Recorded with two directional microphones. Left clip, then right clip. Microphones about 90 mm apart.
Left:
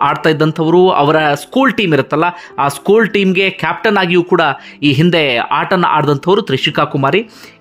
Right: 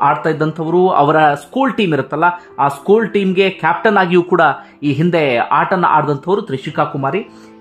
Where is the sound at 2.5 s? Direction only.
35° left (ahead or behind).